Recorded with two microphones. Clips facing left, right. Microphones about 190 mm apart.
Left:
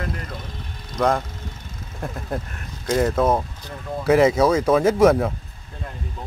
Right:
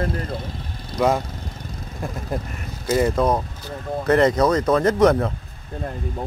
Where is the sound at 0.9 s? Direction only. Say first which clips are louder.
Right 1 dB; 10° right (ahead or behind); by 5.3 s 5° left (ahead or behind).